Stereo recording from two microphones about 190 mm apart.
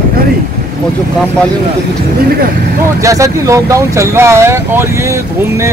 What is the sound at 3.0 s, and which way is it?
Speech, 15° right (ahead or behind).